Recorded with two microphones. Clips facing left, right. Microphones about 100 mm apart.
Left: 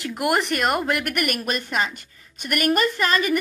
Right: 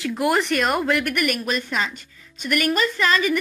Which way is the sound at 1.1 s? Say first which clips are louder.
Right 1 dB; 55° left (ahead or behind).